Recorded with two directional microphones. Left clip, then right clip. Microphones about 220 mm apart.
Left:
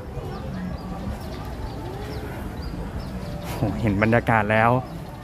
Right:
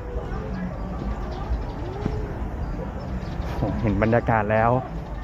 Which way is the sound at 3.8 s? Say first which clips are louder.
Left 1 dB; 20° left (ahead or behind).